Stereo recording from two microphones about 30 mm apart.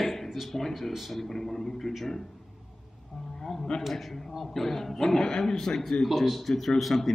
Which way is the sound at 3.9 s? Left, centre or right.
Centre.